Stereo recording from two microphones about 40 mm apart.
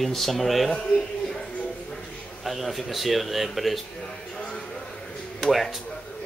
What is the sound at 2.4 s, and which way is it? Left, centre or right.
Speech, centre.